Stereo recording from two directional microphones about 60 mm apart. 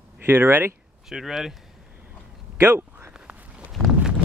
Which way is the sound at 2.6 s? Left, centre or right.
Right.